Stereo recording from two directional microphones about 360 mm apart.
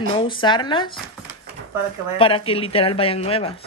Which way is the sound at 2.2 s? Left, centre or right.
Centre.